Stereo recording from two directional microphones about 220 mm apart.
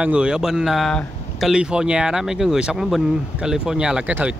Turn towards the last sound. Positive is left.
turn(degrees=-5)  # may be behind; listen again after turning